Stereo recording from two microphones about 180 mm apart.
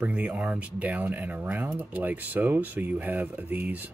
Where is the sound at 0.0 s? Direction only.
5° right (ahead or behind).